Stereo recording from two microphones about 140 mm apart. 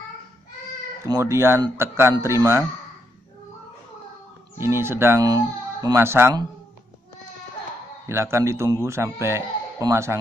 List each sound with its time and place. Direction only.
1.0 s speech: 25° right (ahead or behind)
4.6 s speech: 15° right (ahead or behind)
5.2 s speech: 25° right (ahead or behind)
8.1 s speech: 20° right (ahead or behind)